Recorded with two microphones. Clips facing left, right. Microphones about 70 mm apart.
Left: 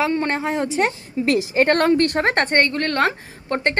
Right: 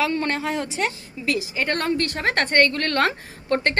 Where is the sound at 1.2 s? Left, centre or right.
Left.